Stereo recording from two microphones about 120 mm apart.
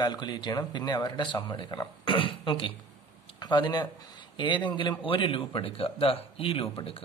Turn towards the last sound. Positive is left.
turn(degrees=50)  # may be behind; listen again after turning